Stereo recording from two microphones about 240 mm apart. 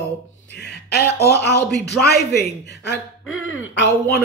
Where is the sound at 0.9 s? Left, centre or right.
Left.